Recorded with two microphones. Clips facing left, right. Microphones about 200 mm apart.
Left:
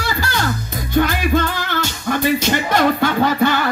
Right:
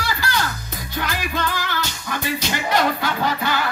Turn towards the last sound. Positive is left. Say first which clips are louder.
# left 7 dB
turn(degrees=50)  # may be behind; listen again after turning